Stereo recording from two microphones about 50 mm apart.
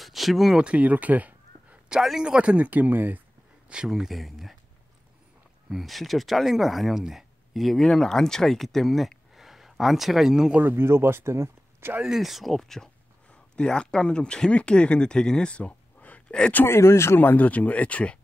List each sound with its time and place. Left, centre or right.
0.0 s a sound: centre
0.6 s speech: right
2.0 s speech: centre
2.2 s speech: right
2.6 s speech: right
3.6 s speech: centre
3.9 s speech: centre
5.7 s speech: centre
9.3 s a sound: centre
10.6 s speech: right
12.0 s speech: centre
16.0 s a sound: left
16.6 s speech: left
17.2 s speech: left